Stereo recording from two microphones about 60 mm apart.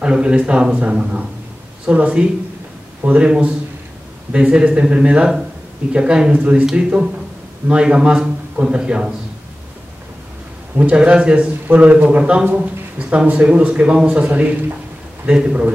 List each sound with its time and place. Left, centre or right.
0.0 s a man's voice: centre
10.8 s a man's voice: centre
11.6 s speech: right